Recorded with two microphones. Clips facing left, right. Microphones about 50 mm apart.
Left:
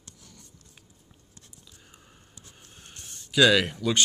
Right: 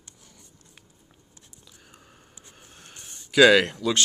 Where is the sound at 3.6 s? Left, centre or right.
Centre.